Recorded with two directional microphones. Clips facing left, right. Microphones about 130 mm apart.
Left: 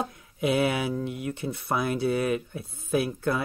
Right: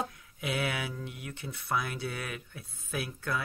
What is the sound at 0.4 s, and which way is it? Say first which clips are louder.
Speech: left 9 dB; 25° left (ahead or behind).